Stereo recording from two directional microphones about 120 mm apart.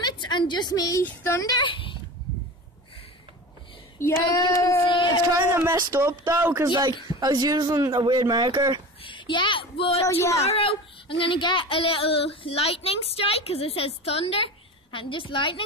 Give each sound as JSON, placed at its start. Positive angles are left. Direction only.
{"t": 0.0, "sound": "a woman's voice", "side_deg": 40}
{"t": 1.0, "sound": "female singing", "side_deg": 20}
{"t": 1.5, "sound": "speech", "side_deg": 40}
{"t": 4.0, "sound": "female singing", "side_deg": 25}
{"t": 4.8, "sound": "speech", "side_deg": 40}
{"t": 5.4, "sound": "speech", "side_deg": -20}
{"t": 6.7, "sound": "speech", "side_deg": -35}
{"t": 9.0, "sound": "a sound", "side_deg": 40}
{"t": 10.4, "sound": "speech", "side_deg": 55}